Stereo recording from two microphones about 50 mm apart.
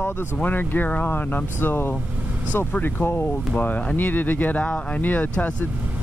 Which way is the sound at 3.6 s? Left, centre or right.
Left.